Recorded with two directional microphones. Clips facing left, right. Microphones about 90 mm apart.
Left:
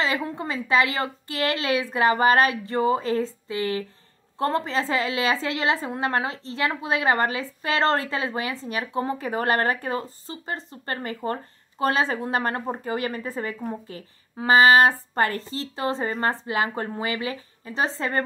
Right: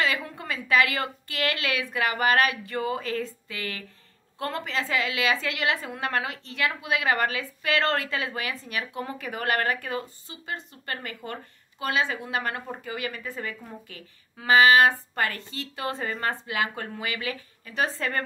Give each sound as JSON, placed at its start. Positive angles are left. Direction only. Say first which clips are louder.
{"t": 0.0, "sound": "a woman's voice", "louder": "left 2 dB", "side_deg": 30}